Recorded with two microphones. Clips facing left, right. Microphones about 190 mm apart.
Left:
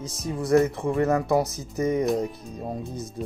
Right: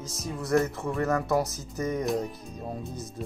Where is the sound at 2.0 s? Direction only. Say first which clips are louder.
Left 4 dB; centre (ahead or behind).